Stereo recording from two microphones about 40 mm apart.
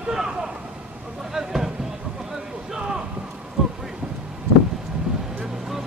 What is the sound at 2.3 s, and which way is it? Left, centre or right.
Boat, centre.